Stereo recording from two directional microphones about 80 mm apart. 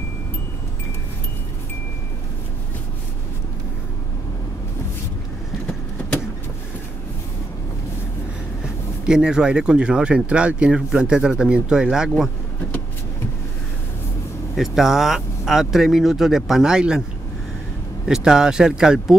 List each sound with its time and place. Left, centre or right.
9.0 s speech: centre
14.6 s speech: centre
18.0 s speech: centre